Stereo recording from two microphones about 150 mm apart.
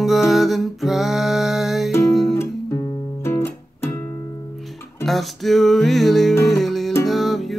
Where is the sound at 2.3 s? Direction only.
20° left (ahead or behind).